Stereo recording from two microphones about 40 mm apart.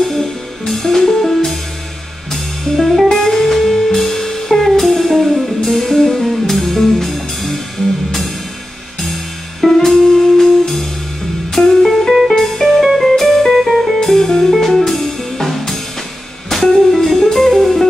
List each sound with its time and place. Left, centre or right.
0.7 s music: centre
9.7 s music: centre